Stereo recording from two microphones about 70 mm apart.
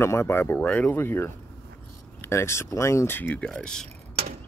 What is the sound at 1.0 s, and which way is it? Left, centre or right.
Speech, left.